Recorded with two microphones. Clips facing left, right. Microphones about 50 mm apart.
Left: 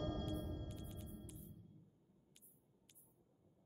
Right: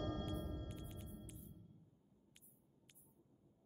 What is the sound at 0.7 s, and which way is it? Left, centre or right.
Music, centre.